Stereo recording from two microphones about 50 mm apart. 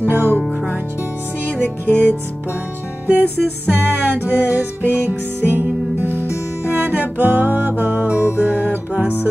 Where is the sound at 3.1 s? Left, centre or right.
Right.